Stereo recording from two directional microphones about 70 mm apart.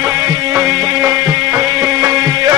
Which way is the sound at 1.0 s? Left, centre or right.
Right.